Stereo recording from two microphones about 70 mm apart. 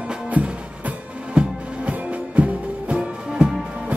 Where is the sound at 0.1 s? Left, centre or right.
Centre.